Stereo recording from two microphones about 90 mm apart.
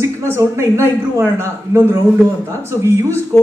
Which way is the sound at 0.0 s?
35° right (ahead or behind).